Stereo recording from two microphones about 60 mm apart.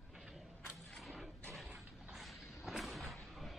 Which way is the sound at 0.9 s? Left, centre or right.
Centre.